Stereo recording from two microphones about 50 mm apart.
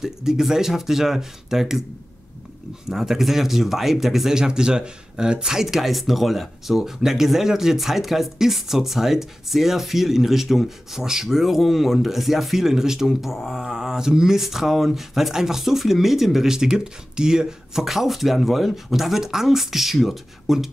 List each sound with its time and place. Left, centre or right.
0.0 s speech: centre
2.9 s speech: centre